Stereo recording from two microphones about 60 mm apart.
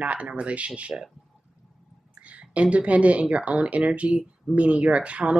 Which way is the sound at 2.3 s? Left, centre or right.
Right.